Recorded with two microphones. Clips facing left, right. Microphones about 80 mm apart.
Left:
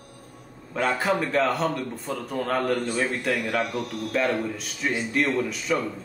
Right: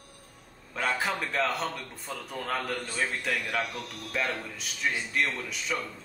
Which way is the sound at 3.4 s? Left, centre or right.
Centre.